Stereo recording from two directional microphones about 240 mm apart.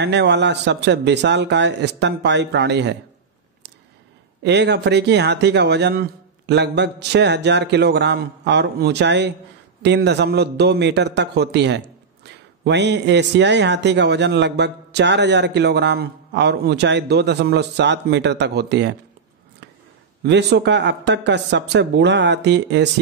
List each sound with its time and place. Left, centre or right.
0.0 s a man's voice: right
4.4 s a man's voice: right
20.2 s a man's voice: right